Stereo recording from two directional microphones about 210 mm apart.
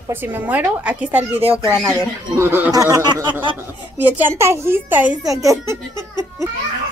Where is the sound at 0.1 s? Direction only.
10° right (ahead or behind).